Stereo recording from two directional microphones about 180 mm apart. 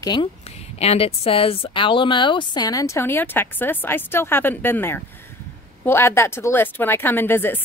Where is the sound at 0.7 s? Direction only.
35° left (ahead or behind).